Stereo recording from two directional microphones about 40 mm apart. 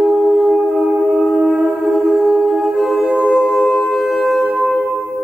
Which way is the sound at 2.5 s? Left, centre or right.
Centre.